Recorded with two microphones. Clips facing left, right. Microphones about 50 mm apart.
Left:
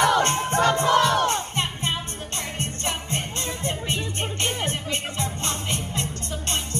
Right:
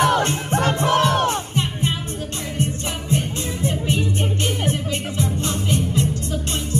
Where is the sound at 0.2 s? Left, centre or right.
Left.